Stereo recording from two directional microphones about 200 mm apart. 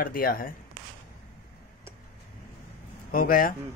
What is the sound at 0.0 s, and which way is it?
Speech, 45° left (ahead or behind).